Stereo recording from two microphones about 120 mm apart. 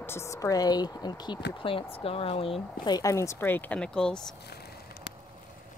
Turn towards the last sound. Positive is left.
turn(degrees=5)  # may be behind; listen again after turning